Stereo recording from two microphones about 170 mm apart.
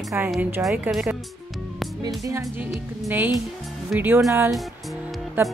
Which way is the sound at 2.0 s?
20° right (ahead or behind).